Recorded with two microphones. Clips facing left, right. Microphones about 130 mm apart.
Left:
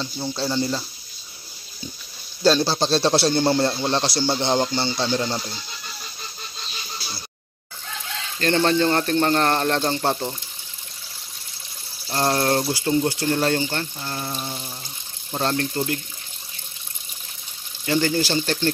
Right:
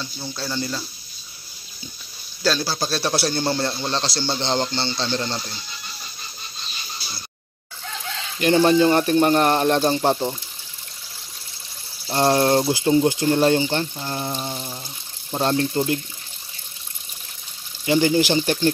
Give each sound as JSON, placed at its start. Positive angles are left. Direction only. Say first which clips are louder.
{"t": 0.0, "sound": "speech", "louder": "left 5 dB", "side_deg": 20}
{"t": 2.4, "sound": "speech", "louder": "left 4 dB", "side_deg": 25}
{"t": 8.4, "sound": "speech", "louder": "right 4 dB", "side_deg": -15}
{"t": 12.1, "sound": "speech", "louder": "right 3 dB", "side_deg": -15}
{"t": 14.4, "sound": "water tap", "louder": "right 2 dB", "side_deg": -10}
{"t": 15.3, "sound": "speech", "louder": "right 3 dB", "side_deg": -20}
{"t": 17.8, "sound": "speech", "louder": "right 4 dB", "side_deg": -15}